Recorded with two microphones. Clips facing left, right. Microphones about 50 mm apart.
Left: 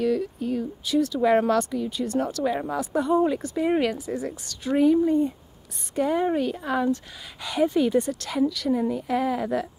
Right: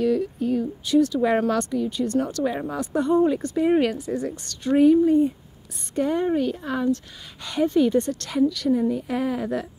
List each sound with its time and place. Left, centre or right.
0.0 s speech: centre